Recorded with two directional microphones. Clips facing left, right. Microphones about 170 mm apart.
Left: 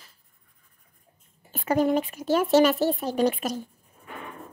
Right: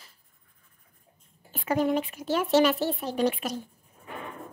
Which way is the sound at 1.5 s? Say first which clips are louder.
Left 3 dB; 40° left (ahead or behind).